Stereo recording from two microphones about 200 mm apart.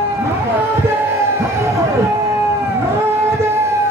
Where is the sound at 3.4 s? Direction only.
15° right (ahead or behind).